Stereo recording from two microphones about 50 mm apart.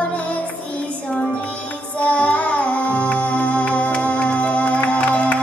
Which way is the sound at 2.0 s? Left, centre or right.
Left.